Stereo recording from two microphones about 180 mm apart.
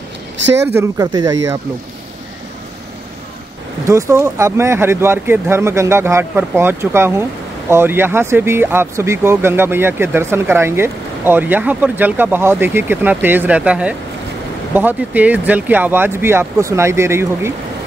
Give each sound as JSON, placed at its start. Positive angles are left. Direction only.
{"t": 0.7, "sound": "speech", "side_deg": -15}
{"t": 3.8, "sound": "speech", "side_deg": -15}